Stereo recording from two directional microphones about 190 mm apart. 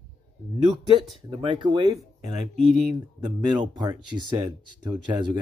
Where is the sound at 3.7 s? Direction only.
20° right (ahead or behind).